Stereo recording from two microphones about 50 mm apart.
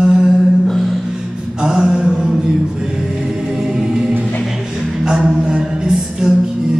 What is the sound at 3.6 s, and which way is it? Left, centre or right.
Choir, centre.